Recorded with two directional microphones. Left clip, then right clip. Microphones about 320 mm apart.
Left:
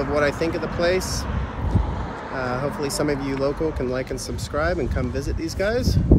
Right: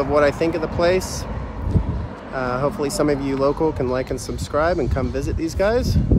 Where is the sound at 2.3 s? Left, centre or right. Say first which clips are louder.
Right 4 dB; centre.